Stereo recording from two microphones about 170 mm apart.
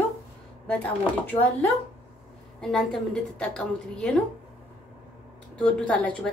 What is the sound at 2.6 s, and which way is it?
A woman's voice, 5° left (ahead or behind).